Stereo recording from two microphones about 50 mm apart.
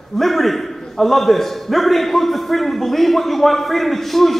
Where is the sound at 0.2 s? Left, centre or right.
Centre.